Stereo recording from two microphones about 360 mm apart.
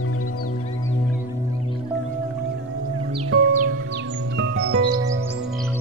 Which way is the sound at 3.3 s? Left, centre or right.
Right.